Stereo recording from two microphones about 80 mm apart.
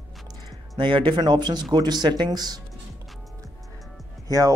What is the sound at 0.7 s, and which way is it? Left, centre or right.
Speech, right.